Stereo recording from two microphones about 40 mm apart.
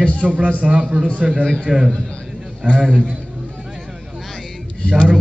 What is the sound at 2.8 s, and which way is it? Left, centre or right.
Speech, right.